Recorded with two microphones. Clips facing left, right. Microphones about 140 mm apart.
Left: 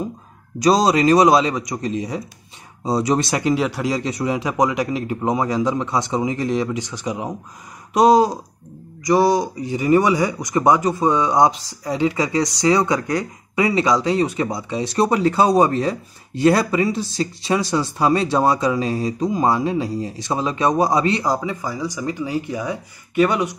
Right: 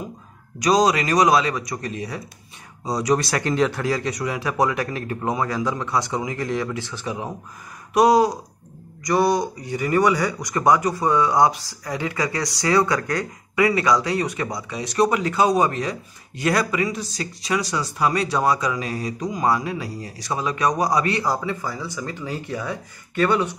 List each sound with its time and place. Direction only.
0.6 s speech: 30° left (ahead or behind); by 23.5 s 10° left (ahead or behind)